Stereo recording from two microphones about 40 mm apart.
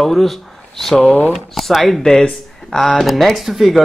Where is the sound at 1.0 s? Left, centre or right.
Left.